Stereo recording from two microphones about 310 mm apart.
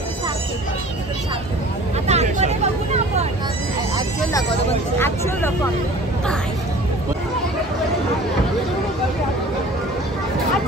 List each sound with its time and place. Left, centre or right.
2.0 s vehicle: right
4.3 s speech: centre